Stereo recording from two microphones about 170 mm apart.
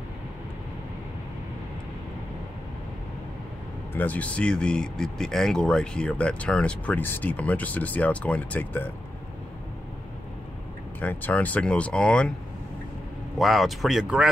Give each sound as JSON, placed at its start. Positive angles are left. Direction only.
{"t": 3.9, "sound": "speech", "side_deg": 10}
{"t": 11.0, "sound": "speech", "side_deg": 10}
{"t": 13.4, "sound": "speech", "side_deg": 0}